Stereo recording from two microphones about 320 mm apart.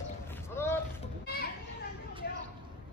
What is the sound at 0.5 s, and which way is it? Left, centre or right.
Boat, centre.